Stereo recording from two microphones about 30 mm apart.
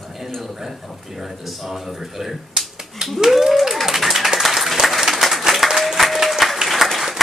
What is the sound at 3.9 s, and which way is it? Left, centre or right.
Clapping, centre.